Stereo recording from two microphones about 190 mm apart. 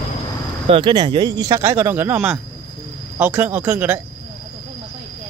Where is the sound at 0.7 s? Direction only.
25° right (ahead or behind).